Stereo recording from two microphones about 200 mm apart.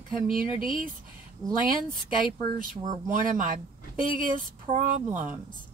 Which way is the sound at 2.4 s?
45° right (ahead or behind).